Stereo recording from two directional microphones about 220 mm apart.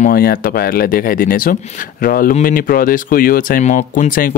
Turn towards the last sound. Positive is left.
turn(degrees=40)  # may be behind; listen again after turning